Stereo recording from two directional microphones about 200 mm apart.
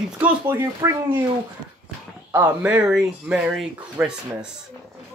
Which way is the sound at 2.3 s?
10° right (ahead or behind).